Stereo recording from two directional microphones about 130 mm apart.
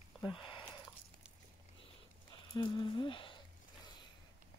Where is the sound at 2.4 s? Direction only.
35° left (ahead or behind).